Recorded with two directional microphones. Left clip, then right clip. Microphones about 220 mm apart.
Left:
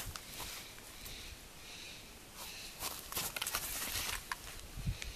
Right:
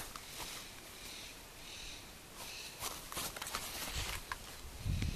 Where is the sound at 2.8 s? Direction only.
10° left (ahead or behind).